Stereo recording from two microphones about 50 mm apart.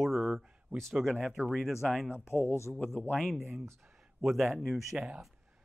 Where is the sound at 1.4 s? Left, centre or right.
Right.